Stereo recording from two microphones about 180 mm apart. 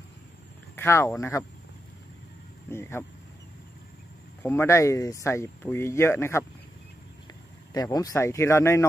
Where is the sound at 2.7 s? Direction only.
15° left (ahead or behind).